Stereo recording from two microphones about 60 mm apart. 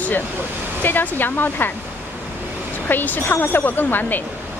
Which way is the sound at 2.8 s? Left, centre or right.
Left.